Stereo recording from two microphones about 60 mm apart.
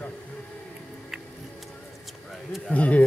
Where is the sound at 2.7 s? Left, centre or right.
Left.